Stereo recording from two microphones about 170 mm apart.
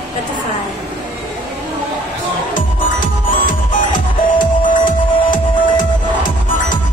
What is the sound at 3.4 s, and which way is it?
Music, 50° left (ahead or behind).